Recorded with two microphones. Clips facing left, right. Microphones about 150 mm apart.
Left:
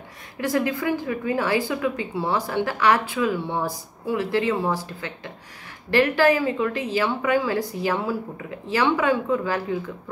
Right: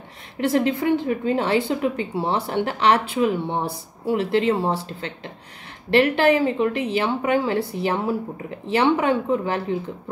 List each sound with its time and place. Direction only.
0.4 s speech: 25° right (ahead or behind)